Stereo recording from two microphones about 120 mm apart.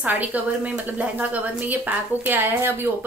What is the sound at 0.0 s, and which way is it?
A woman's voice, 15° right (ahead or behind).